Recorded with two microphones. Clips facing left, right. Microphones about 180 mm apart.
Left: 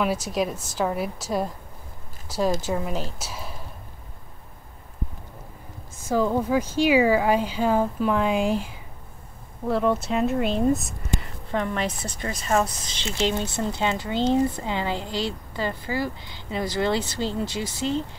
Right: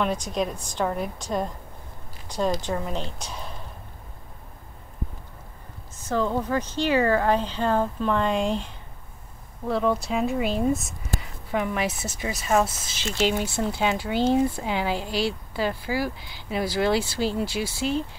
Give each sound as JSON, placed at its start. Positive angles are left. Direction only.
{"t": 0.0, "sound": "speech", "side_deg": 5}
{"t": 6.0, "sound": "speech", "side_deg": 10}
{"t": 15.0, "sound": "speech", "side_deg": 20}
{"t": 15.5, "sound": "speech", "side_deg": -10}